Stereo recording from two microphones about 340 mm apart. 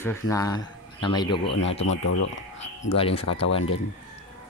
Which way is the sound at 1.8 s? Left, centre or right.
Left.